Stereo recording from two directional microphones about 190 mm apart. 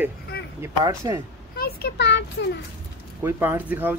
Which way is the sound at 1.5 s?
55° left (ahead or behind).